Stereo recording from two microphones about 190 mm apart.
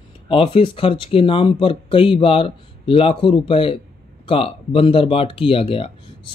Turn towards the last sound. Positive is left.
turn(degrees=30)  # may be behind; listen again after turning